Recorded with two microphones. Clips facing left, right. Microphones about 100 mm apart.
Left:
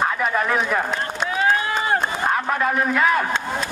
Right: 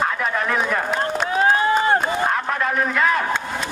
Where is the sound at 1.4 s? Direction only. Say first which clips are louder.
Right 4 dB; 35° right (ahead or behind).